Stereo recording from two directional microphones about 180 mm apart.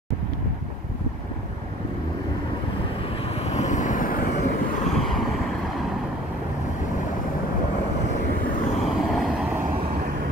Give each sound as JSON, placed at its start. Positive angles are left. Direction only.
{"t": 3.4, "sound": "vehicle", "side_deg": 40}
{"t": 4.8, "sound": "vehicle", "side_deg": 0}
{"t": 8.8, "sound": "vehicle", "side_deg": 0}